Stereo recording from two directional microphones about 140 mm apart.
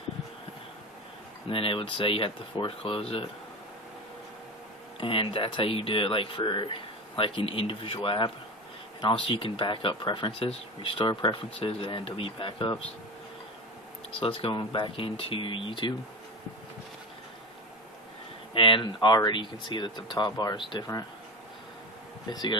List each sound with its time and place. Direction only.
1.5 s speech: 40° left (ahead or behind)
5.0 s speech: 40° left (ahead or behind)
14.2 s speech: 40° left (ahead or behind)
18.5 s speech: 35° left (ahead or behind)
22.3 s speech: 30° left (ahead or behind)